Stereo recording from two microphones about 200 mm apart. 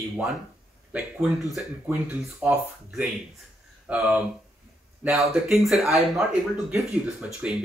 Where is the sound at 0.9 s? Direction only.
Centre (ahead or behind).